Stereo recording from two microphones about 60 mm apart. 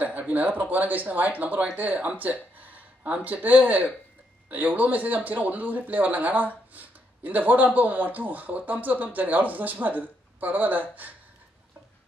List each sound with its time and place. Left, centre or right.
0.0 s speech: right